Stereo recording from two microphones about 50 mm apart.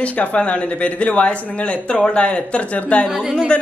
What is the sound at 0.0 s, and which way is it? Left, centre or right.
Speech, left.